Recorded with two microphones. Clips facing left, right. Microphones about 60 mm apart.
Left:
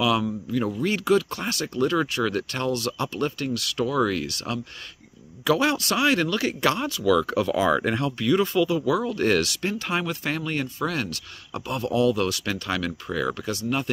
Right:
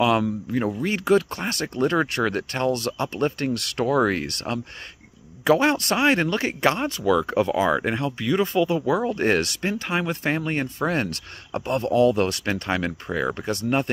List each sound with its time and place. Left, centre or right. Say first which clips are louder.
0.0 s speech: right 3 dB; right